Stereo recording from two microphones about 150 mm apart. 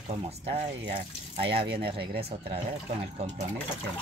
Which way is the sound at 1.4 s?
40° right (ahead or behind).